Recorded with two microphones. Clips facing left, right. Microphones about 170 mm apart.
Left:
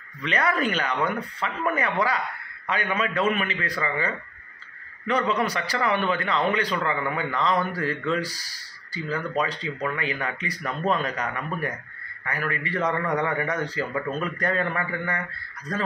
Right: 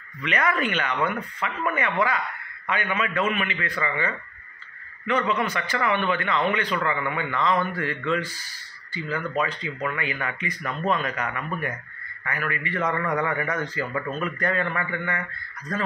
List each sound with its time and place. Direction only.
0.2 s a man's voice: 35° left (ahead or behind)
5.3 s a man's voice: 35° left (ahead or behind)